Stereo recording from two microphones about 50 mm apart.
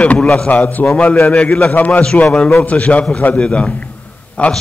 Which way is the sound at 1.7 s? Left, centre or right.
Left.